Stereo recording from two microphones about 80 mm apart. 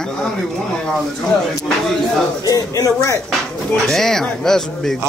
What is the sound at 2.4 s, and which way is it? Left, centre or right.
Speech, left.